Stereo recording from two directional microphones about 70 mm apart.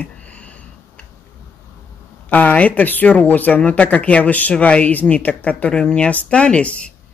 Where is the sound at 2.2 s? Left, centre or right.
Centre.